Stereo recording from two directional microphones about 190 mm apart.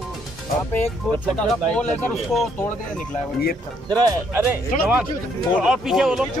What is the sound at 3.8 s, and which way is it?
Speech, 20° right (ahead or behind).